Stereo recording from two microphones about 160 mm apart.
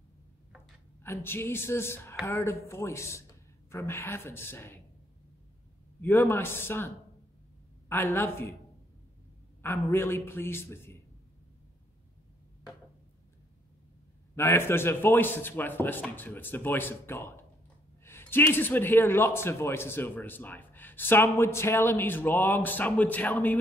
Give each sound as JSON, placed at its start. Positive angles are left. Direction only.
{"t": 1.0, "sound": "speech", "side_deg": 15}
{"t": 5.9, "sound": "speech", "side_deg": 15}
{"t": 7.9, "sound": "speech", "side_deg": 15}
{"t": 9.6, "sound": "speech", "side_deg": 15}
{"t": 14.3, "sound": "speech", "side_deg": 15}